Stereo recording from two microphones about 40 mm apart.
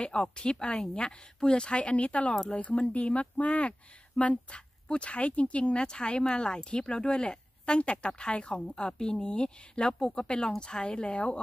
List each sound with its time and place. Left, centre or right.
0.0 s speech: left